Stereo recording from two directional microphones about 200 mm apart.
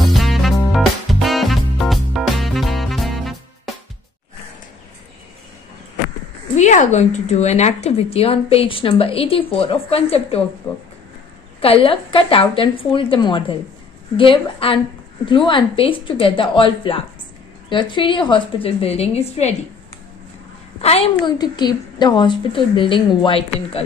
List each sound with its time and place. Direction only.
0.0 s music: centre (ahead or behind)
6.5 s a woman's voice: 35° left (ahead or behind)
11.6 s a woman's voice: 25° left (ahead or behind)
20.8 s a woman's voice: 30° left (ahead or behind)